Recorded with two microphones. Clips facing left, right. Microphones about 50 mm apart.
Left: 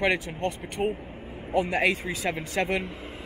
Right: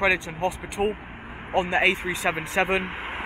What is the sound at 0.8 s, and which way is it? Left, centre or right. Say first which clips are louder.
Speech: right 3 dB; right.